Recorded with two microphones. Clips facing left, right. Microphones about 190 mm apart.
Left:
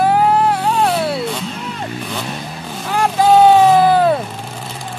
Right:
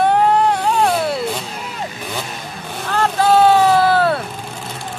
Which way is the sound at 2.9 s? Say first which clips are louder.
Left 2 dB; 15° left (ahead or behind).